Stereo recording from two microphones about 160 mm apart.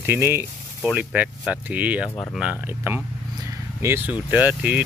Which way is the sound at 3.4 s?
15° right (ahead or behind).